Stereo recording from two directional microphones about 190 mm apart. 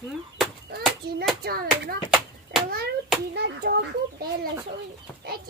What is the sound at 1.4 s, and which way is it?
Speech, 50° right (ahead or behind).